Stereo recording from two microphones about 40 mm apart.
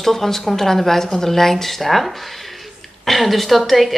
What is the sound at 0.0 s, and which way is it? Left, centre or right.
A woman's voice, centre.